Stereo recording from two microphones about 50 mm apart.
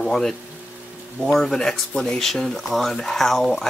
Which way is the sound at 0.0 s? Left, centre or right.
Centre.